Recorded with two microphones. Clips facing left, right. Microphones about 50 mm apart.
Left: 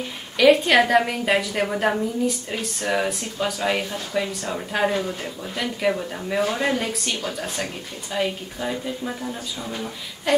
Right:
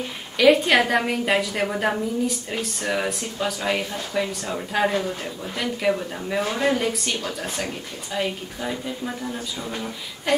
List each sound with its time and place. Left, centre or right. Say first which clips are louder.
0.4 s a woman's voice: left 1 dB; centre